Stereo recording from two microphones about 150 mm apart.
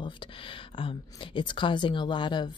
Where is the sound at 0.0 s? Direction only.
35° left (ahead or behind).